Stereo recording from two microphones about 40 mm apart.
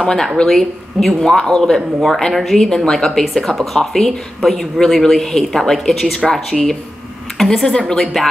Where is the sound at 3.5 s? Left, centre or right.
Centre.